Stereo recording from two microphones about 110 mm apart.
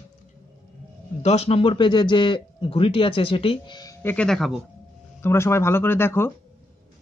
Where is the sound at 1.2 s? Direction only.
75° left (ahead or behind); by 3.8 s 50° left (ahead or behind).